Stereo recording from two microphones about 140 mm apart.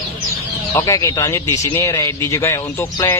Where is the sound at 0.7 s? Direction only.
25° left (ahead or behind).